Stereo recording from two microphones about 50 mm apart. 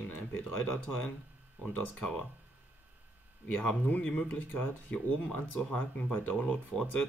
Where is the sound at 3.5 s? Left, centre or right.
Left.